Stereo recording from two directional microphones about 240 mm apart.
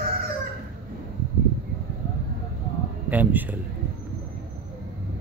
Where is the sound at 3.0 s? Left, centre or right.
Centre.